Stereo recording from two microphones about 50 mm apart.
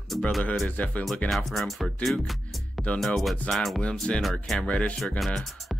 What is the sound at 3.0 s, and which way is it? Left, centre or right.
Speech, centre.